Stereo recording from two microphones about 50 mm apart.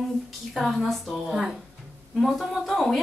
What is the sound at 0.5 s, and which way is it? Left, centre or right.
Speech, centre.